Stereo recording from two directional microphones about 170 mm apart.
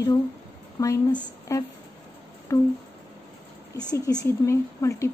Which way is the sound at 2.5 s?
20° left (ahead or behind).